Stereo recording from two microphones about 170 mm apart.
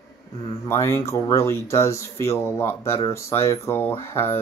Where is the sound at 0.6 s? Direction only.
15° left (ahead or behind).